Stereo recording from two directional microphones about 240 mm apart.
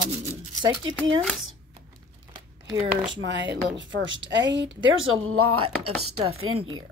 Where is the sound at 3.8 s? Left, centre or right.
Right.